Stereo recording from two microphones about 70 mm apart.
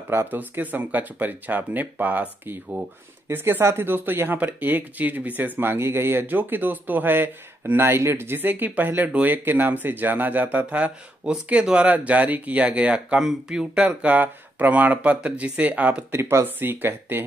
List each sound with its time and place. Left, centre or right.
0.1 s speech: right; by 13.8 s centre
13.8 s speech: right
16.1 s speech: right